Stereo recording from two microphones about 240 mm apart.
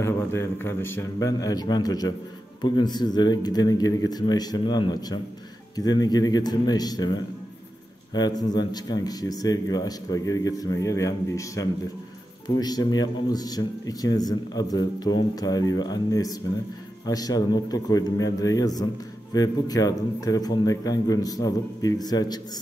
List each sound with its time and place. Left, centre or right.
0.0 s speech: centre